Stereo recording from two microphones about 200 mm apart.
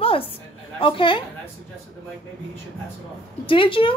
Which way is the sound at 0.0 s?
25° left (ahead or behind).